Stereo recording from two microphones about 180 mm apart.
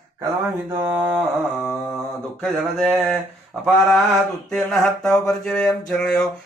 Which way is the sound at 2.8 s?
5° right (ahead or behind).